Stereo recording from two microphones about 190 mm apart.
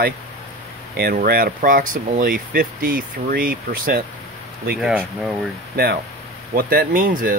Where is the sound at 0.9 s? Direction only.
55° right (ahead or behind).